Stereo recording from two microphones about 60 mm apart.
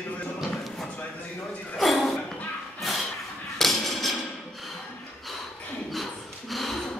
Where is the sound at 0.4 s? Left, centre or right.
Centre.